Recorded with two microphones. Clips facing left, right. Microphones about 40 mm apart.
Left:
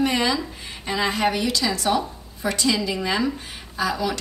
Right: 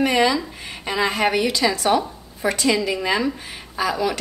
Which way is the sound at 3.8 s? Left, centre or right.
Right.